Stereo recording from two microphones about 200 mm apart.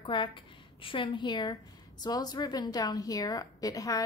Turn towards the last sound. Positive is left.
turn(degrees=15)  # may be behind; listen again after turning